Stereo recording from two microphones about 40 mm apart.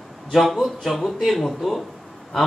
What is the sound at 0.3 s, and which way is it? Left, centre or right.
Speech, centre.